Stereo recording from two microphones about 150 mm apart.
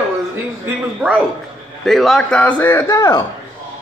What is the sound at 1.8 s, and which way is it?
A man's voice, centre (ahead or behind).